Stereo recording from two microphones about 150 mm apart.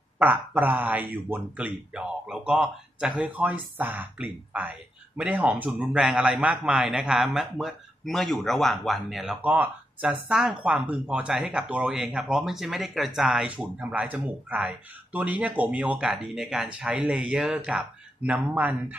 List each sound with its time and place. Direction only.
0.2 s speech: 10° right (ahead or behind)